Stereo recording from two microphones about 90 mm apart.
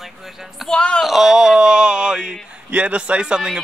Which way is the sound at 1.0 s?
5° right (ahead or behind).